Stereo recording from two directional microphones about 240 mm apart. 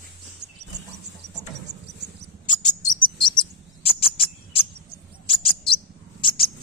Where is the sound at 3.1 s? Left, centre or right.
Left.